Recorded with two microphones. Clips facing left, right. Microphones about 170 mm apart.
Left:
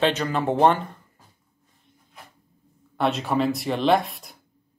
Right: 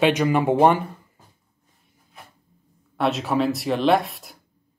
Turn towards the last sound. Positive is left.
turn(degrees=0)  # may be behind; listen again after turning